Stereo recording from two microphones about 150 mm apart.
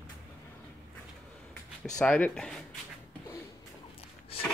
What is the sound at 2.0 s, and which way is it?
Speech, 10° left (ahead or behind).